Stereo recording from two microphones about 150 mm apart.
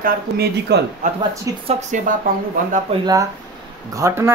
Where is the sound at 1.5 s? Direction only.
20° right (ahead or behind).